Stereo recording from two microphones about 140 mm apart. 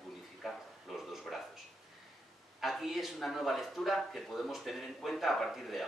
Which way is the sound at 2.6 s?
Centre (ahead or behind).